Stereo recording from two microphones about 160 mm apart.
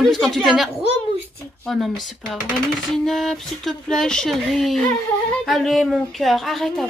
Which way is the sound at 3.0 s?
Centre (ahead or behind).